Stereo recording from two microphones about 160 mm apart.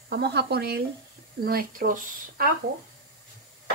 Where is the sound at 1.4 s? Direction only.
70° right (ahead or behind).